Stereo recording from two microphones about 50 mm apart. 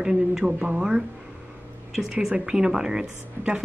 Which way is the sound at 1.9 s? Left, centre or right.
Centre.